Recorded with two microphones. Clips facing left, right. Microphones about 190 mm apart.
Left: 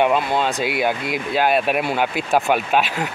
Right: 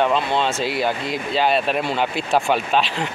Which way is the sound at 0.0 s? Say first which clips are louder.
Left 1 dB; 10° left (ahead or behind).